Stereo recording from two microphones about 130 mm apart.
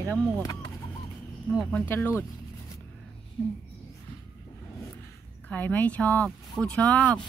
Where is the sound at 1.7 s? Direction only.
15° left (ahead or behind).